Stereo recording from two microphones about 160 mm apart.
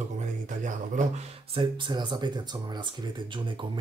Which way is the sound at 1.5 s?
30° right (ahead or behind).